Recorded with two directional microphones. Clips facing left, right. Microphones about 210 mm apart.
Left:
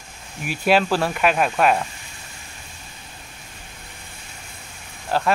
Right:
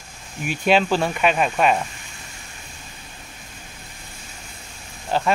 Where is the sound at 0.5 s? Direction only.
5° left (ahead or behind).